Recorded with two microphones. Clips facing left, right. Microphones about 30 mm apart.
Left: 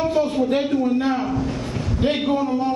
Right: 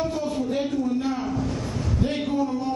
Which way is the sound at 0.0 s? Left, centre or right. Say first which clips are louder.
Left 6 dB; left.